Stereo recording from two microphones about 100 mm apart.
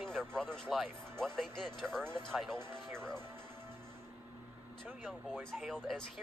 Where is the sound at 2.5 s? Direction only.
25° right (ahead or behind).